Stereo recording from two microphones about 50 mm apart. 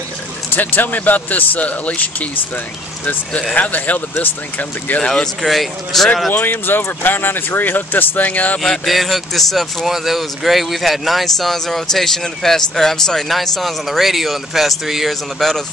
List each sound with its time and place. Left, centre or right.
0.6 s speech: left
3.5 s speech: left
4.9 s speech: centre
5.4 s speech: centre
6.6 s speech: left
8.8 s speech: centre